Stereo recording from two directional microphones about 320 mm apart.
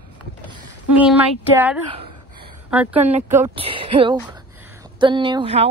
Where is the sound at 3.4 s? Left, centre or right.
Centre.